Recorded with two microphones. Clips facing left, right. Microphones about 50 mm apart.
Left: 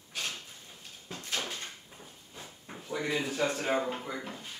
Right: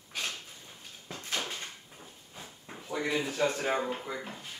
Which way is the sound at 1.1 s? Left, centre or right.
Right.